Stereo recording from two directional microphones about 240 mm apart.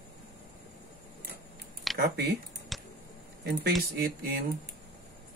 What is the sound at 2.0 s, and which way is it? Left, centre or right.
Speech, right.